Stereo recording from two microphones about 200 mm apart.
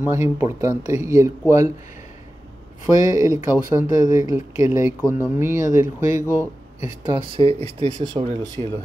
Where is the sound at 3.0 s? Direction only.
15° right (ahead or behind).